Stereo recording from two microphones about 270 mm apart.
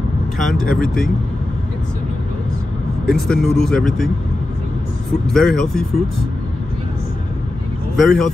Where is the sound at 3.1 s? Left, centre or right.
Centre.